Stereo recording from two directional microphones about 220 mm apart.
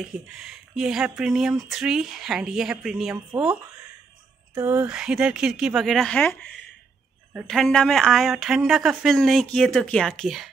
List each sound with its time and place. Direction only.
0.0 s speech: centre (ahead or behind)
4.6 s speech: 10° right (ahead or behind)